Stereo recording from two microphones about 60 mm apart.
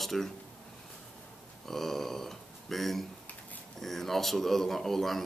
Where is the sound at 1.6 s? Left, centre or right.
Centre.